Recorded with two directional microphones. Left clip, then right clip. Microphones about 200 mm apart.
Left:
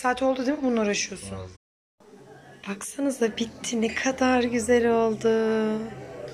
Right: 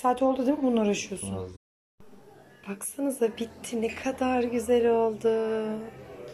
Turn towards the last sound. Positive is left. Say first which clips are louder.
# left 4 dB
turn(degrees=-5)  # may be behind; listen again after turning